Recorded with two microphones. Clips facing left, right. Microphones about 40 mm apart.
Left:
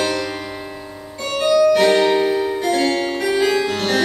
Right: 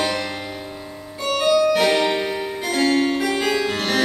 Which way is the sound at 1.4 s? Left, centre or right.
Centre.